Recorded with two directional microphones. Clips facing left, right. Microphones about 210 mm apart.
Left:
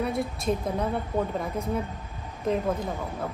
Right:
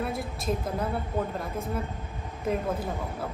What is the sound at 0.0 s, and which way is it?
Speech, centre (ahead or behind).